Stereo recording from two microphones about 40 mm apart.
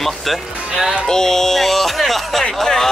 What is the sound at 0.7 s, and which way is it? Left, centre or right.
Speech, centre.